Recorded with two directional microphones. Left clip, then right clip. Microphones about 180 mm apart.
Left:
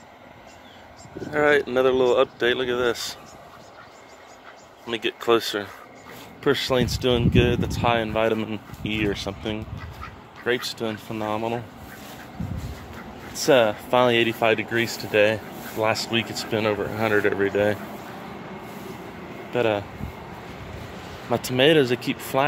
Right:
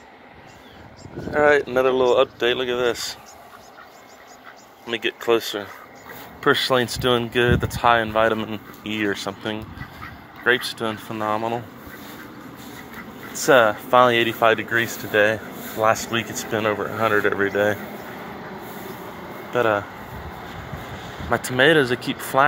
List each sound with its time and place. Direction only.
1.7 s speech: 30° left (ahead or behind)
2.4 s speech: 20° left (ahead or behind)
4.8 s speech: 20° left (ahead or behind)
5.3 s speech: 40° left (ahead or behind)
6.4 s speech: 10° left (ahead or behind)
10.4 s speech: centre (ahead or behind)
11.1 s speech: 15° left (ahead or behind)
13.5 s speech: 20° left (ahead or behind)
19.5 s speech: 25° left (ahead or behind)
21.3 s speech: 20° left (ahead or behind)